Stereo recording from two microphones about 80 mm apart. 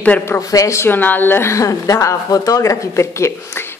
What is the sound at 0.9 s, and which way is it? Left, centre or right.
Speech, left.